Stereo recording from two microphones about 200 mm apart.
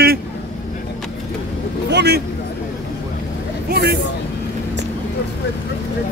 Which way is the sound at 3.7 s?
55° right (ahead or behind).